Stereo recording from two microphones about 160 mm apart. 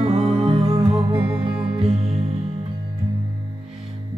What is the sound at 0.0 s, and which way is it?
Music, 30° right (ahead or behind).